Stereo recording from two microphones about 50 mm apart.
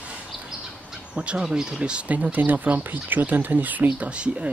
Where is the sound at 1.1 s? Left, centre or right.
Right.